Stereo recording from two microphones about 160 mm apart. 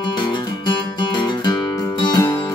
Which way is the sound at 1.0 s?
25° left (ahead or behind).